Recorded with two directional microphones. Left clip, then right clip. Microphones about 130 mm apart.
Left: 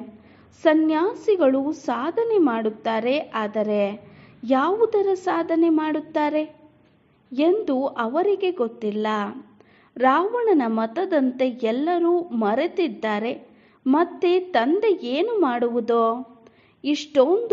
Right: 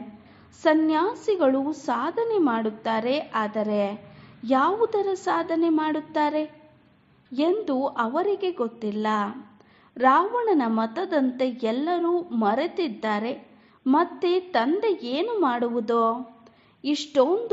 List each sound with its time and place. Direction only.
0.6 s a woman's voice: 40° left (ahead or behind)